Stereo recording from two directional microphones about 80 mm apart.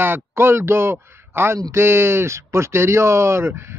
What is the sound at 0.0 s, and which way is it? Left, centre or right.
Speech, right.